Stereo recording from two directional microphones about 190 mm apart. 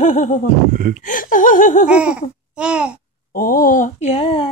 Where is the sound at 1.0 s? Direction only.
45° left (ahead or behind).